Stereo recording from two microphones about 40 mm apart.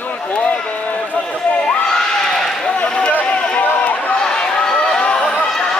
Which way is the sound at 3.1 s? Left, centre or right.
Left.